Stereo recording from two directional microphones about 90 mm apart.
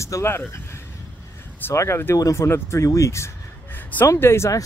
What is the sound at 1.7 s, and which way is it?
Speech, 30° left (ahead or behind).